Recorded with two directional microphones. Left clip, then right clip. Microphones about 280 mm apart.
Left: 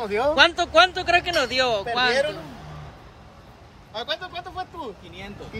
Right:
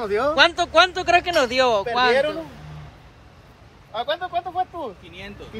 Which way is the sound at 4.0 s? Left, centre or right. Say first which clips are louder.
Right 5 dB; centre.